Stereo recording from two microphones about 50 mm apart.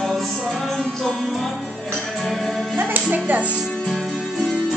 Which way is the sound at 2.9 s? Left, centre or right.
Right.